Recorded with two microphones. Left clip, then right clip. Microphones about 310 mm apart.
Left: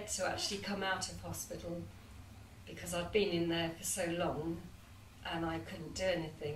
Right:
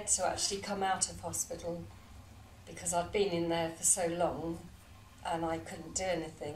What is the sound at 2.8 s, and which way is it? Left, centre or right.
Speech, right.